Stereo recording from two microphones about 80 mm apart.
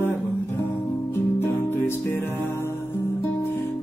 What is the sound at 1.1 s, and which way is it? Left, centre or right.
Music, left.